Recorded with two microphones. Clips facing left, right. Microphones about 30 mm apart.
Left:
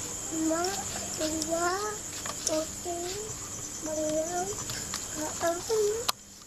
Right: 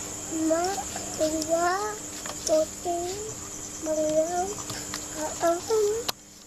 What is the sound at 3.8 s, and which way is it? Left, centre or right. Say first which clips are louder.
Child singing: right 6 dB; right.